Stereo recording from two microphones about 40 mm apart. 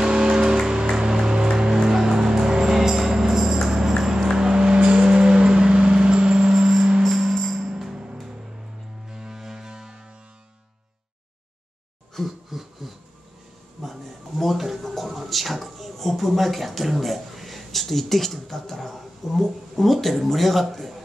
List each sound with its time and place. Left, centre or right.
0.0 s music: centre
4.4 s vehicle: centre
7.0 s music: centre
7.5 s music: centre
12.1 s a sound: centre